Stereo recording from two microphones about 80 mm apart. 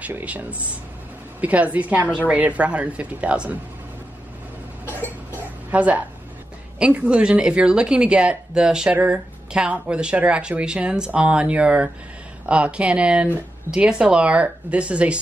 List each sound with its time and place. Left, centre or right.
0.0 s a woman's voice: centre
4.8 s cough: right
6.8 s speech: centre